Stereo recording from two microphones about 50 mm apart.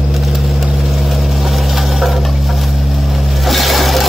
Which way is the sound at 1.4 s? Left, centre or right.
Centre.